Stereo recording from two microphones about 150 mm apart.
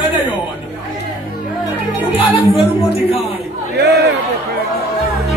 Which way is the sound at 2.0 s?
10° right (ahead or behind).